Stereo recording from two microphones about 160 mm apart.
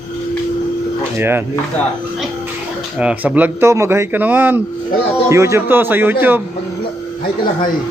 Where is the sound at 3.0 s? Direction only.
10° right (ahead or behind).